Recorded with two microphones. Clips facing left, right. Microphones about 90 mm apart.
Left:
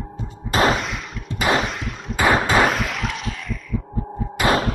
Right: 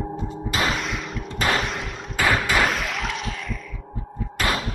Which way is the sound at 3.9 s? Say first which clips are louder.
Left 6 dB; 30° left (ahead or behind).